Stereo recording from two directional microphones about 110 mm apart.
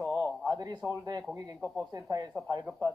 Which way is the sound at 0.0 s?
15° left (ahead or behind).